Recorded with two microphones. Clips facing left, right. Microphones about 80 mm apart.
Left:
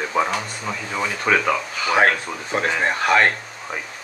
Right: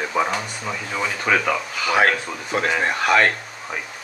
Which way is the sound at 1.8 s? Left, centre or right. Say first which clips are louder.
Left 1 dB; left.